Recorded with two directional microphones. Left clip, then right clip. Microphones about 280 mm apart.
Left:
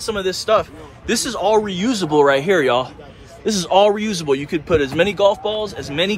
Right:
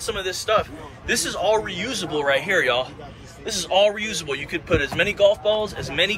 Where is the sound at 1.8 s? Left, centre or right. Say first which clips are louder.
Left 8 dB; left.